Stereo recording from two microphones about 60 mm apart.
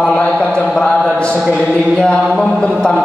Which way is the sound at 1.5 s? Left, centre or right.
Centre.